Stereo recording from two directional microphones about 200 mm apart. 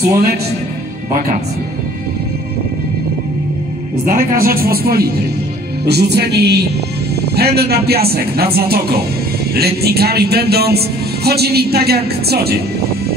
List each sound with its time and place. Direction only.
4.1 s speech: 45° right (ahead or behind)
5.9 s music: 55° right (ahead or behind)
7.3 s speech: 50° right (ahead or behind)